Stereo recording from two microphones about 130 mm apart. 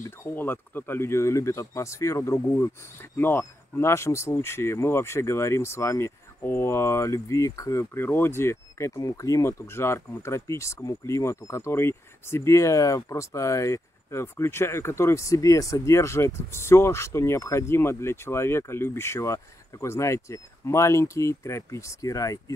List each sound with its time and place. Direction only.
0.0 s speech: 20° left (ahead or behind)